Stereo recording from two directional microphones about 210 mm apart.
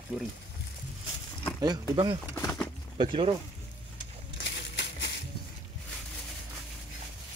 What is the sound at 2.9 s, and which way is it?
Speech, 25° right (ahead or behind).